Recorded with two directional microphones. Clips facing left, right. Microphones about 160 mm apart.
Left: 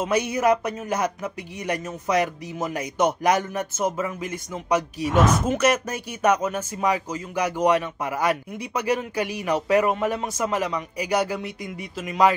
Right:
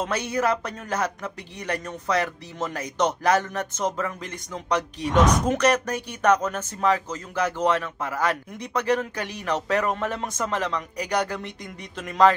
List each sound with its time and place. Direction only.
0.0 s speech: 10° left (ahead or behind)